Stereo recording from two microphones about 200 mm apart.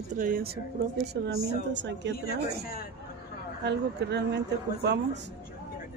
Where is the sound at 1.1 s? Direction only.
60° right (ahead or behind).